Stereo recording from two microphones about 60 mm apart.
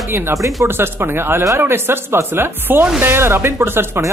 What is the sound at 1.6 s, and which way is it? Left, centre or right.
Speech, right.